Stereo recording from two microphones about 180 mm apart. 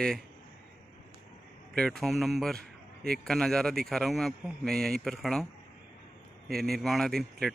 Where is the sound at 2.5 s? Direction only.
55° right (ahead or behind).